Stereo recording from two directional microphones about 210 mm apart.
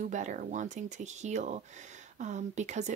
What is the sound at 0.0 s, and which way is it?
Speech, 35° right (ahead or behind).